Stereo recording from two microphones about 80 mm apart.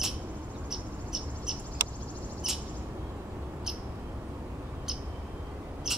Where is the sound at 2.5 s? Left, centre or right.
Centre.